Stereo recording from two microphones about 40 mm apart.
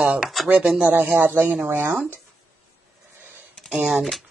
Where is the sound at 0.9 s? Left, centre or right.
Right.